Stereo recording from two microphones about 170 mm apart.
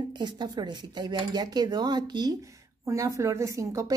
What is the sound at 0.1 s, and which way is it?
A woman's voice, 25° right (ahead or behind).